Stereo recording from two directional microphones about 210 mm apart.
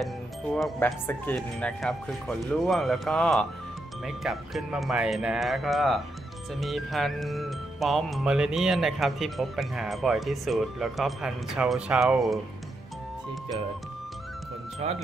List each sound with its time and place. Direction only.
0.0 s speech: centre (ahead or behind)
14.8 s speech: 30° right (ahead or behind)